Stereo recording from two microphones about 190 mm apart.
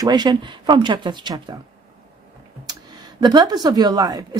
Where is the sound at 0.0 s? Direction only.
20° right (ahead or behind).